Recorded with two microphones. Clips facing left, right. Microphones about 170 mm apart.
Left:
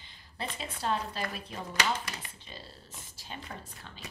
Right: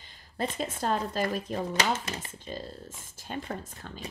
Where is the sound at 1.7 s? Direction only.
25° right (ahead or behind).